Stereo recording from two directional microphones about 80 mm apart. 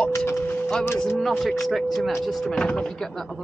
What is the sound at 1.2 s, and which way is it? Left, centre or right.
Speech, centre.